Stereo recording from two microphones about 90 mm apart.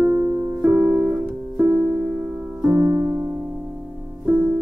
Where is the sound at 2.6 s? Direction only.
25° right (ahead or behind).